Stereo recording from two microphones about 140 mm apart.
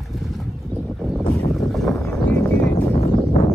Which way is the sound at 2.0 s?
15° left (ahead or behind).